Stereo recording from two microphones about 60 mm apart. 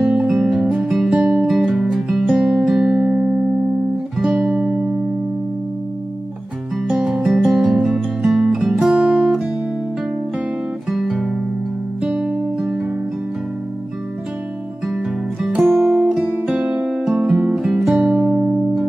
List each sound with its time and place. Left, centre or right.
0.1 s music: centre
1.1 s music: centre
1.5 s music: centre
6.9 s music: centre
8.9 s music: centre
10.9 s guitar: centre
12.0 s music: centre
15.6 s music: centre